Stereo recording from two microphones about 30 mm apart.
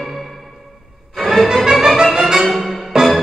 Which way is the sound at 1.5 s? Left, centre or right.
Centre.